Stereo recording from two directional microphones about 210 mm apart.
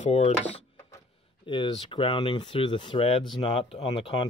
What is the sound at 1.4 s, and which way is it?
Speech, 20° left (ahead or behind).